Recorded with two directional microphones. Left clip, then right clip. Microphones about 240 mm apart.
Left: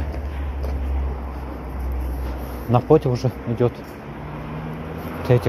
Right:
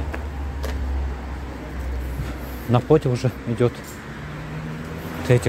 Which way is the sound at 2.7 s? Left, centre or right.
Centre.